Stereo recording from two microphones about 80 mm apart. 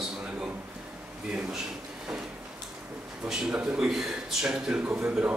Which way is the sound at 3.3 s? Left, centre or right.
Centre.